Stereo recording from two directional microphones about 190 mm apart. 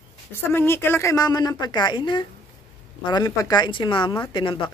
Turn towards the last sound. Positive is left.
turn(degrees=25)  # may be behind; listen again after turning